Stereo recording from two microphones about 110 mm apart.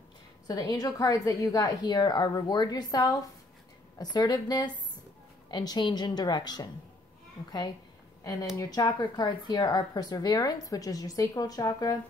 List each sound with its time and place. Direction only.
0.5 s speech: 40° left (ahead or behind)